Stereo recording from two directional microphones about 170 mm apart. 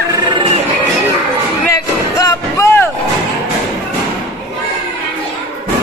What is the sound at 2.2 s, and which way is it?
Music, 20° left (ahead or behind).